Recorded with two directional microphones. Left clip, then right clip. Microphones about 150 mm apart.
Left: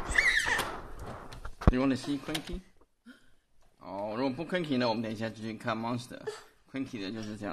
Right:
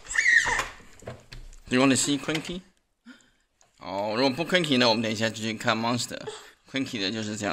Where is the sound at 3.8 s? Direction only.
25° right (ahead or behind).